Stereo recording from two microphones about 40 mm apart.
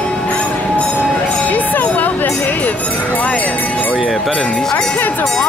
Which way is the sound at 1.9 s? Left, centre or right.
Left.